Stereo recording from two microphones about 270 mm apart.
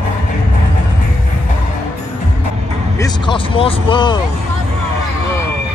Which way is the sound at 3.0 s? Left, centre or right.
Centre.